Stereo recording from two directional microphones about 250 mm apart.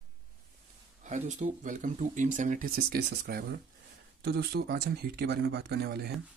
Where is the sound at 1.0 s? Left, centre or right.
Right.